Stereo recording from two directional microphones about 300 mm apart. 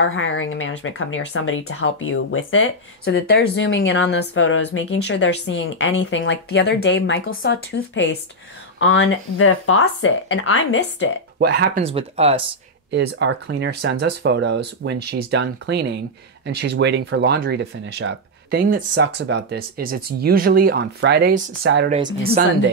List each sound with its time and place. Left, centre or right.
0.0 s speech: left
11.3 s speech: right
11.8 s speech: centre
12.9 s speech: right
21.9 s speech: centre